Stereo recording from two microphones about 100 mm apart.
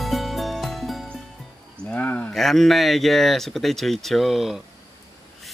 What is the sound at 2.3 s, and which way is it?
Speech, centre (ahead or behind).